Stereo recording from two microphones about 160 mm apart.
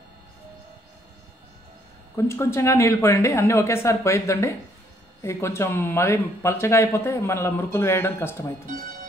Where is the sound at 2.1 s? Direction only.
15° left (ahead or behind).